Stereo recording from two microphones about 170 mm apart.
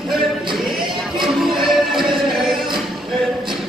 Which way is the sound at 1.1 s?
Centre (ahead or behind).